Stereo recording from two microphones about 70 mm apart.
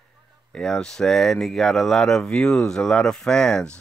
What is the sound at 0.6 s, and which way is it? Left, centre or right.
Speech, centre.